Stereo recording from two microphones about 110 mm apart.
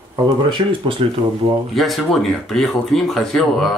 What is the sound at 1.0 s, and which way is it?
Speech, 55° right (ahead or behind).